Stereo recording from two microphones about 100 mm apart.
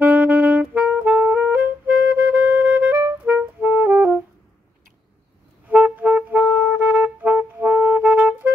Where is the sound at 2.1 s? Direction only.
15° right (ahead or behind).